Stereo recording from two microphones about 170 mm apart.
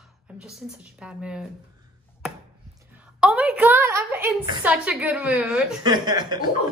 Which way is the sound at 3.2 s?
5° right (ahead or behind).